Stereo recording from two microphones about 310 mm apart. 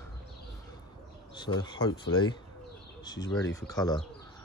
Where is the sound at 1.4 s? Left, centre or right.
Centre.